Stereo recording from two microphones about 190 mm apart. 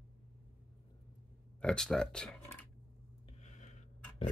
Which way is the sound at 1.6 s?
5° left (ahead or behind).